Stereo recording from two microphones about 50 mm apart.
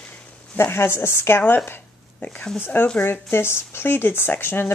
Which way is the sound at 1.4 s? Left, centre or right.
Left.